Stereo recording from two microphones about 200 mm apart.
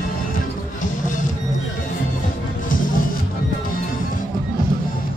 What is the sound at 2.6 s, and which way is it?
Music, 45° left (ahead or behind).